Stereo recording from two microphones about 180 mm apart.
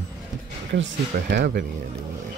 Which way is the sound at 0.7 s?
75° right (ahead or behind).